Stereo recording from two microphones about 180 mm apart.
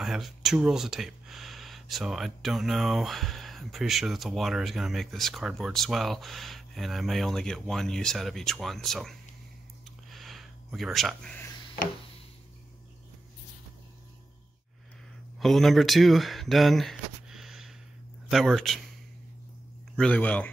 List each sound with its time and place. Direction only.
0.0 s speech: centre (ahead or behind)
10.0 s a sound: centre (ahead or behind)
15.3 s speech: centre (ahead or behind)
20.0 s speech: 10° left (ahead or behind)